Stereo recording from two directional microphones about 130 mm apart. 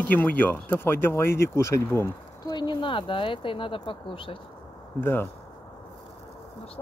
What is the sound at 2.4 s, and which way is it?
Speech, 35° left (ahead or behind).